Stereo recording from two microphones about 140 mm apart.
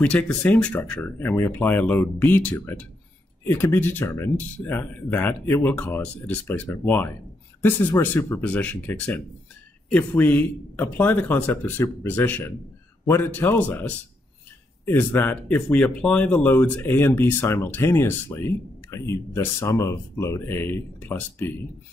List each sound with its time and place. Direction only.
0.0 s speech: 10° left (ahead or behind)